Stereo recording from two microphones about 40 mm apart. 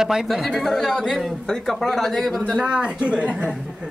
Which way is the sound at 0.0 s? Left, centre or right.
Centre.